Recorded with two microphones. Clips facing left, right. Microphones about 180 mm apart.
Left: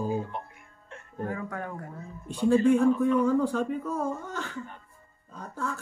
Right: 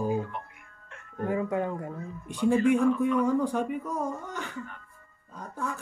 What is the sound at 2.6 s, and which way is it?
Speech, 30° left (ahead or behind).